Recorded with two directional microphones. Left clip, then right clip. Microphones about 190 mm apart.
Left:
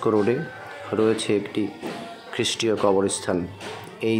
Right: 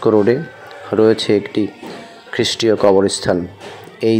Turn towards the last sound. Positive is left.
turn(degrees=-25)  # may be behind; listen again after turning